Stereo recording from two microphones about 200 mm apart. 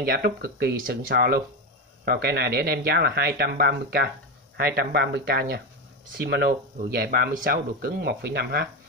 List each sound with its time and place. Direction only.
0.0 s speech: 50° right (ahead or behind)